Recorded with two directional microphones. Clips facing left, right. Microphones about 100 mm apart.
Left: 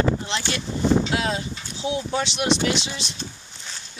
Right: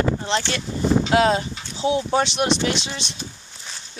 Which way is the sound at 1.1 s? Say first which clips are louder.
Right 7 dB; 45° right (ahead or behind).